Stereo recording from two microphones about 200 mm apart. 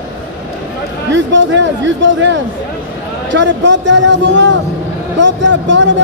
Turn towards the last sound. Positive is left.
turn(degrees=-65)  # may be behind; listen again after turning